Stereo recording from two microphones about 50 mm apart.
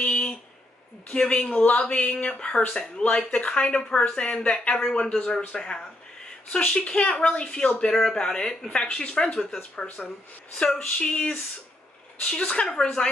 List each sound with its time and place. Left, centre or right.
0.0 s a sound: left
1.1 s speech: centre
2.3 s speech: centre
7.8 s speech: centre